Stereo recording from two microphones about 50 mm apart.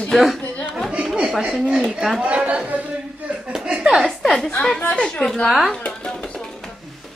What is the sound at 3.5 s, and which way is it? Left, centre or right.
Chuckle, centre.